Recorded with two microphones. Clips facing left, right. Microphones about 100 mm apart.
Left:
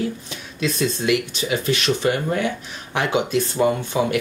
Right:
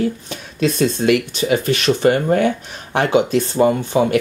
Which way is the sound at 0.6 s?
50° right (ahead or behind).